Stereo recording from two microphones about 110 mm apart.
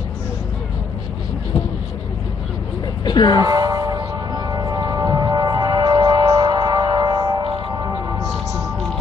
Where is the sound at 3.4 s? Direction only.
35° right (ahead or behind).